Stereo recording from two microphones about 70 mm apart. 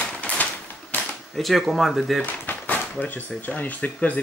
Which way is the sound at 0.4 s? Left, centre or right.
Left.